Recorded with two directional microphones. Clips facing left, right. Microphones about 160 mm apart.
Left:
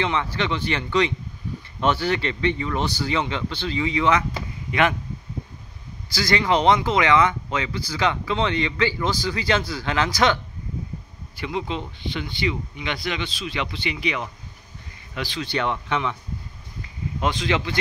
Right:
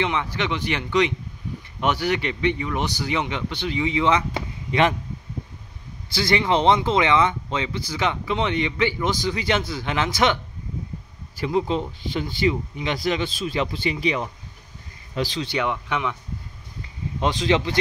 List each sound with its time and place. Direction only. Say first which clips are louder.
0.0 s speech: even; 15° right (ahead or behind)
4.6 s speech: right 1 dB; 30° right (ahead or behind)
6.1 s speech: even; 25° right (ahead or behind)
11.3 s speech: right 5 dB; 35° right (ahead or behind)
15.4 s speech: even; 15° right (ahead or behind)
17.2 s speech: right 3 dB; 35° right (ahead or behind)